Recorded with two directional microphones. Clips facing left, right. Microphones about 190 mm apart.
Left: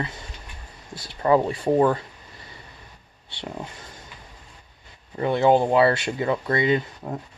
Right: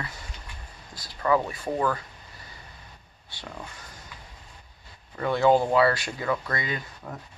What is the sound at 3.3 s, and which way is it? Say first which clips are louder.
Speech: left 6 dB; 30° left (ahead or behind).